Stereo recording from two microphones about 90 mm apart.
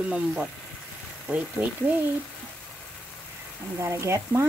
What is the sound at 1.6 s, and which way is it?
Speech, 20° right (ahead or behind).